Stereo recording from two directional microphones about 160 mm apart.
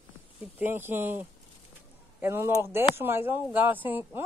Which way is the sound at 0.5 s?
10° right (ahead or behind).